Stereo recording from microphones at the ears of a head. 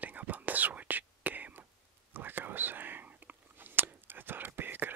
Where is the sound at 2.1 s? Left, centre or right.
Right.